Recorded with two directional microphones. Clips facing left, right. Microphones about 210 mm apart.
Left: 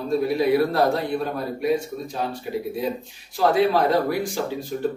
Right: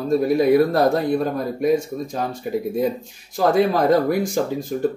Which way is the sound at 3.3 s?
45° right (ahead or behind).